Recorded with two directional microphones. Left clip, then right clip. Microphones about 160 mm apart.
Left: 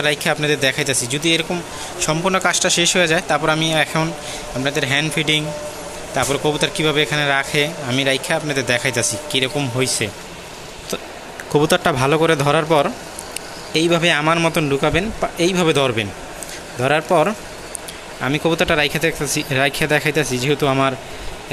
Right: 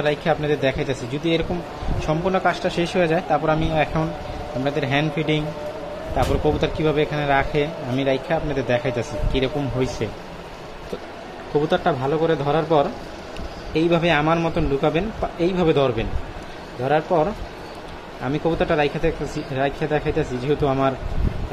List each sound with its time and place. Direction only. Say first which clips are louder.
0.0 s speech: left 3 dB; 10° left (ahead or behind)
11.6 s speech: left 4 dB; 20° left (ahead or behind)
13.7 s speech: left 3 dB; 5° left (ahead or behind)
16.8 s speech: left 4 dB; 20° left (ahead or behind)